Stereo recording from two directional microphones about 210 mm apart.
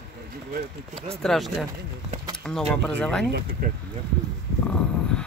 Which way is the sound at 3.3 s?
50° right (ahead or behind).